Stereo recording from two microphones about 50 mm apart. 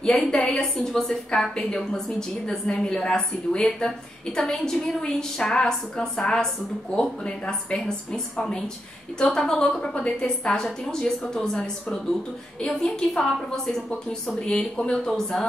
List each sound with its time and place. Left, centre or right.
0.2 s a woman's voice: left
0.7 s a woman's voice: centre